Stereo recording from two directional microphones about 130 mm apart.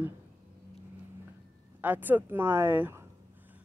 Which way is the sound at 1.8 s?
15° right (ahead or behind).